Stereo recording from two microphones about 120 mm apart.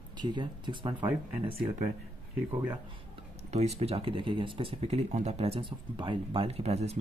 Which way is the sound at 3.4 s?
65° right (ahead or behind).